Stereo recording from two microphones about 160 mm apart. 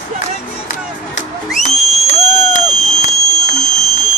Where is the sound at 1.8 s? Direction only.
40° left (ahead or behind).